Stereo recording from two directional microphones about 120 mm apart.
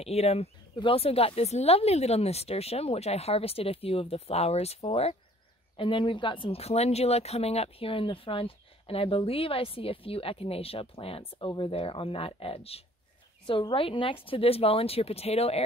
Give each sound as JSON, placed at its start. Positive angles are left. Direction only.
{"t": 0.0, "sound": "speech", "side_deg": 60}
{"t": 5.8, "sound": "speech", "side_deg": 45}
{"t": 13.5, "sound": "speech", "side_deg": 45}